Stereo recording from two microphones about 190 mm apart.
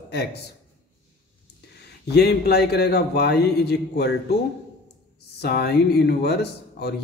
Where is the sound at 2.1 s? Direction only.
60° left (ahead or behind).